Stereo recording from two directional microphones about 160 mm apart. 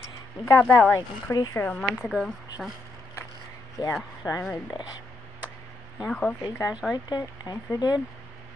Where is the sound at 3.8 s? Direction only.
25° left (ahead or behind).